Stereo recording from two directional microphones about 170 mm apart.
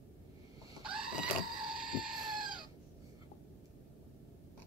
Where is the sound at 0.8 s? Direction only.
5° right (ahead or behind).